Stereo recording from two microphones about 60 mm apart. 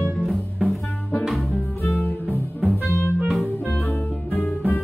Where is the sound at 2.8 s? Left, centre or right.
Left.